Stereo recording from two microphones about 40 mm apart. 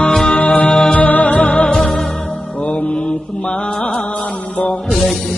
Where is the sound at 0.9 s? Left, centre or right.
Left.